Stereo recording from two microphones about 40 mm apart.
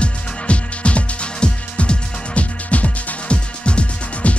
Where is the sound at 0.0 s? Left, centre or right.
Left.